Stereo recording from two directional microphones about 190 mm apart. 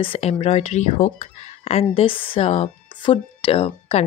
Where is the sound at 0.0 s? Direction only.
30° left (ahead or behind).